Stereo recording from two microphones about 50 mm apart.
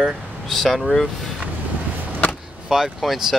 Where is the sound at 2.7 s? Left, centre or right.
Centre.